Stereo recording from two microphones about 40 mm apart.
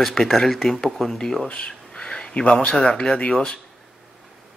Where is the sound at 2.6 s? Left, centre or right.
Left.